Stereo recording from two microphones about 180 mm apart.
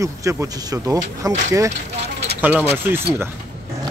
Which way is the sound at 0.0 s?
15° right (ahead or behind).